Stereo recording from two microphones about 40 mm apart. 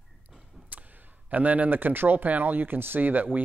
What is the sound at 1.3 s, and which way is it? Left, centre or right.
Speech, right.